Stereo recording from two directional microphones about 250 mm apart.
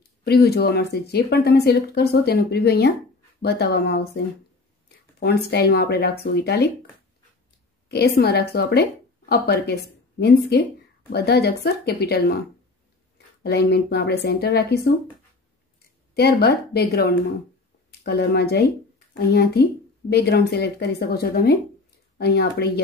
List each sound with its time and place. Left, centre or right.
0.2 s speech: left
5.2 s speech: left
7.9 s a woman's voice: left
13.4 s speech: left
16.2 s speech: left